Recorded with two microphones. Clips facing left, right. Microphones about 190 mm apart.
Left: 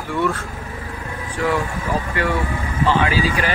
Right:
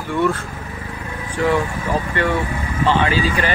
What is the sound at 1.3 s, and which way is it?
Speech, centre (ahead or behind).